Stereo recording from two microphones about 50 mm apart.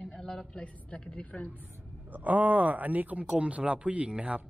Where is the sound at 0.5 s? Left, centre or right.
Left.